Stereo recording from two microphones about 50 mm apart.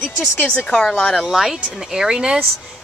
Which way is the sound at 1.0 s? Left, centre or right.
Centre.